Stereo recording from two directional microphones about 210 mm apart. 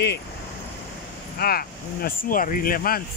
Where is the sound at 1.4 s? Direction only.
45° left (ahead or behind).